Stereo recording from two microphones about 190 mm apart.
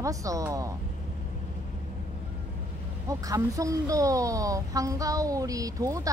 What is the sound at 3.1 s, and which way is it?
A woman's voice, 15° right (ahead or behind).